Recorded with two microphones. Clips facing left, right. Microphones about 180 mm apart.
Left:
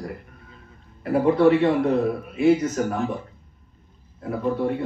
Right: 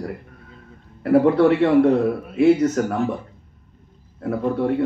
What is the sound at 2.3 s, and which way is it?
Speech, 70° right (ahead or behind).